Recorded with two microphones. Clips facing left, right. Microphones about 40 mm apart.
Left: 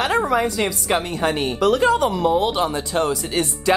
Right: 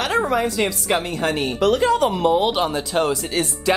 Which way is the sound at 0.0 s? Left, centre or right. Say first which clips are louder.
Left 1 dB; centre.